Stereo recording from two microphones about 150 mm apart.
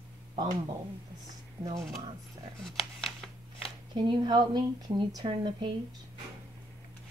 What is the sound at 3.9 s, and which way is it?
A woman's voice, 30° right (ahead or behind).